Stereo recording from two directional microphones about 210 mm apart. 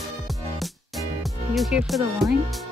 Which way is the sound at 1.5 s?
Centre (ahead or behind).